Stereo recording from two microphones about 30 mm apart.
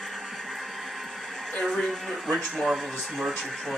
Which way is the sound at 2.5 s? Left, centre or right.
Centre.